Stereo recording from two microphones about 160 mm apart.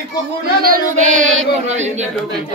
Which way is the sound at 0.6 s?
55° right (ahead or behind).